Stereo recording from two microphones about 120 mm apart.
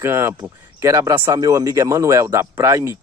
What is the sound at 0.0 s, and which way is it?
Speech, 20° right (ahead or behind).